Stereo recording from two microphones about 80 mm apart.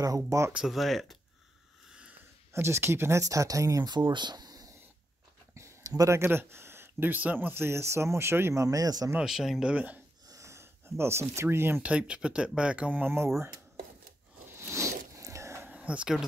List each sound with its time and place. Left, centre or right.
0.0 s speech: right
0.7 s speech: centre
1.9 s sniff: centre
2.5 s speech: right
3.9 s speech: right
5.5 s speech: right
9.2 s speech: centre
9.7 s speech: centre
10.2 s a sound: right
11.8 s speech: centre
14.6 s zipper: right
15.7 s speech: centre